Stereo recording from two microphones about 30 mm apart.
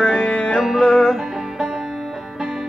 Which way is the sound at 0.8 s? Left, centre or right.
Left.